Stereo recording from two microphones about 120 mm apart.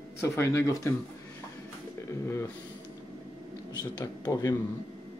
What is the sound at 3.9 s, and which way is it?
Speech, 35° left (ahead or behind).